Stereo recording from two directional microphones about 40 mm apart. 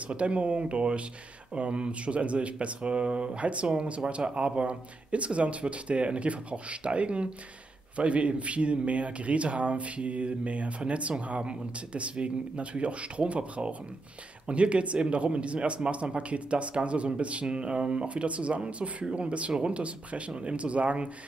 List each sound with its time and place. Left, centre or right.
0.1 s a man's voice: right